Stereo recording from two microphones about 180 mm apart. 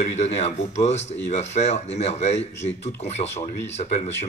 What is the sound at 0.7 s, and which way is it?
Speech, 40° left (ahead or behind).